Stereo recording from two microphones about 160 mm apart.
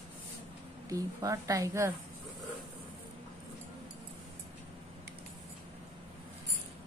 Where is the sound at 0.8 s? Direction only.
20° right (ahead or behind).